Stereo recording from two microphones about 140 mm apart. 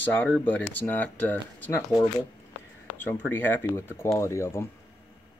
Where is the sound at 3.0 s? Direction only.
15° left (ahead or behind).